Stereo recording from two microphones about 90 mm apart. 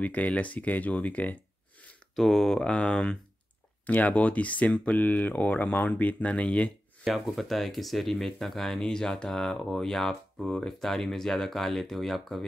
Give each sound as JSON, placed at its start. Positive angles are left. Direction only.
{"t": 0.0, "sound": "speech", "side_deg": 15}
{"t": 2.1, "sound": "speech", "side_deg": 5}
{"t": 7.1, "sound": "speech", "side_deg": 0}